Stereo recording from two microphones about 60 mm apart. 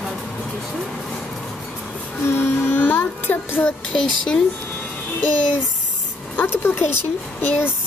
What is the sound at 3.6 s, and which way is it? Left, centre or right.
Speech, centre.